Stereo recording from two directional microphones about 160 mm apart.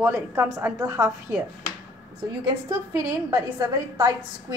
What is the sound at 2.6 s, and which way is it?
A woman's voice, 20° right (ahead or behind).